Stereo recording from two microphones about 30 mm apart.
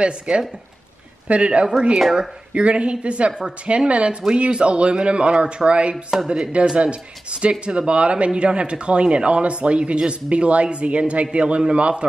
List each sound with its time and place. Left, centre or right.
0.3 s speech: right
3.6 s speech: right